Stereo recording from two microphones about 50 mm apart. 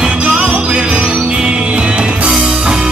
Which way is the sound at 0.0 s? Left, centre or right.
Right.